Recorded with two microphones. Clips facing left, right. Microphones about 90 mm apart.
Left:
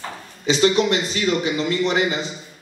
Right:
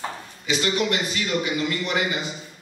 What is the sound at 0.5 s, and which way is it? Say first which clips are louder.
A man's voice: left 6 dB; 30° left (ahead or behind).